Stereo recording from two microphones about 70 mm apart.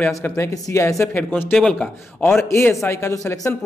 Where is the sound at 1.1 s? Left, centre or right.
Left.